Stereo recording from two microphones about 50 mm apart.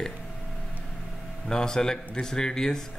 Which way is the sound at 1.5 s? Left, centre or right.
Centre.